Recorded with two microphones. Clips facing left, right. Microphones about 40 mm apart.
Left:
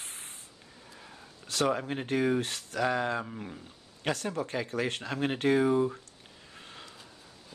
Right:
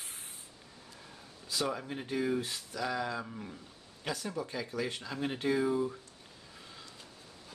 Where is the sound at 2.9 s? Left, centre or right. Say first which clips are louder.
Left 5 dB; left.